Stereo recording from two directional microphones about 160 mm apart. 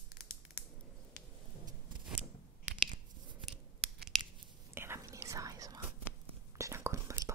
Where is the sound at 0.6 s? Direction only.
15° right (ahead or behind).